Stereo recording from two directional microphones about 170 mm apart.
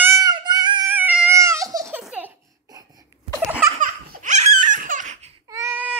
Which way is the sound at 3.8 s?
45° right (ahead or behind).